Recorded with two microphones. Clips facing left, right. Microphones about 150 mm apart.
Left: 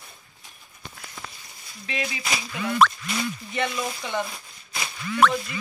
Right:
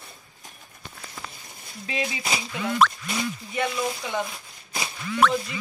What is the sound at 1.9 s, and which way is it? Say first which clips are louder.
Speech: right 1 dB; 25° right (ahead or behind).